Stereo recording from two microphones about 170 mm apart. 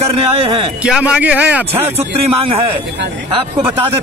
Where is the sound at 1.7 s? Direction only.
35° right (ahead or behind).